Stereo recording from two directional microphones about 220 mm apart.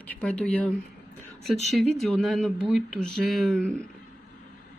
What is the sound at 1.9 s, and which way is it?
Speech, centre (ahead or behind).